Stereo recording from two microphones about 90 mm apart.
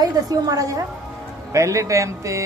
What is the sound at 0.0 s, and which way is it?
A man's voice, 45° right (ahead or behind).